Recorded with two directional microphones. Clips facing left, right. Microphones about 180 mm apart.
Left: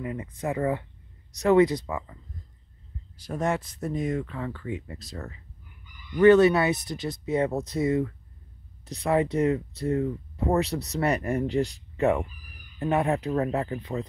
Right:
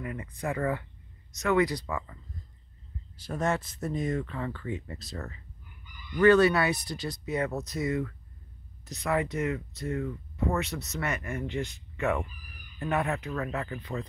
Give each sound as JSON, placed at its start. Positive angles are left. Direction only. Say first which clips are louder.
{"t": 0.0, "sound": "speech", "louder": "left 3 dB", "side_deg": 20}
{"t": 1.3, "sound": "speech", "louder": "left 6 dB", "side_deg": 35}
{"t": 3.2, "sound": "speech", "louder": "left 2 dB", "side_deg": 15}